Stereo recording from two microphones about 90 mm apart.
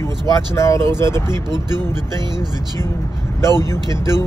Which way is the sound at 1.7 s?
50° right (ahead or behind).